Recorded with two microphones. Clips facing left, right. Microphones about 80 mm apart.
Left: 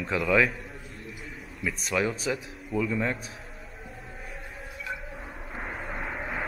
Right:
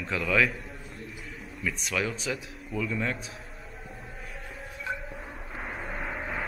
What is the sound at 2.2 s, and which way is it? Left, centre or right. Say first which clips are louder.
Speech: left 3 dB; centre.